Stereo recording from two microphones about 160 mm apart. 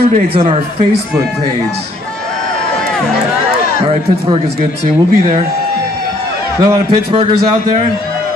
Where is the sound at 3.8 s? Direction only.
40° right (ahead or behind).